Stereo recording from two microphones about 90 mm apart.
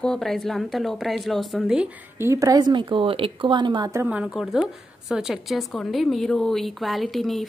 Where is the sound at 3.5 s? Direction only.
55° right (ahead or behind).